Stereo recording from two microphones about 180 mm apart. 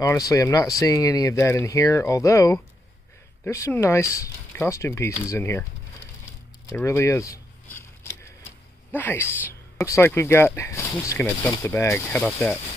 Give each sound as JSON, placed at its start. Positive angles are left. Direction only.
{"t": 0.3, "sound": "speech", "side_deg": 20}
{"t": 6.7, "sound": "a sound", "side_deg": 15}
{"t": 8.9, "sound": "speech", "side_deg": 15}